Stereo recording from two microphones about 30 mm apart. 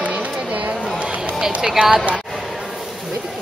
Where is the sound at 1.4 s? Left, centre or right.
Centre.